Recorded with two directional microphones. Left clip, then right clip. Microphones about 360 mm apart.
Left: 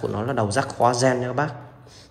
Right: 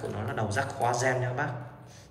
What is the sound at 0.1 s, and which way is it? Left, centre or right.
A man's voice, centre.